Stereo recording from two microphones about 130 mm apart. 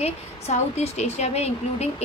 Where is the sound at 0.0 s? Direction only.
60° left (ahead or behind).